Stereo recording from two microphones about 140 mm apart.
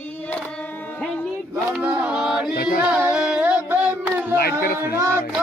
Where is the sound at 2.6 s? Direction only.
90° left.